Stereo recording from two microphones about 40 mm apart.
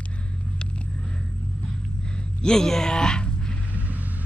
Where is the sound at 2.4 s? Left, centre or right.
Centre.